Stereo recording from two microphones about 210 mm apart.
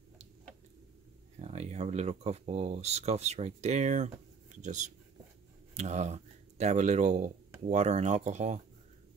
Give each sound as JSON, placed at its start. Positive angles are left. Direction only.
{"t": 1.4, "sound": "speech", "side_deg": -30}